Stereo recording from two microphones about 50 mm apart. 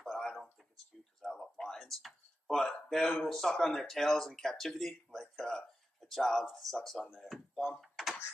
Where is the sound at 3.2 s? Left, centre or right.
Centre.